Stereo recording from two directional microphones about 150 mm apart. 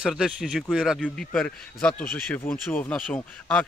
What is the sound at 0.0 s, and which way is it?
Speech, 5° right (ahead or behind).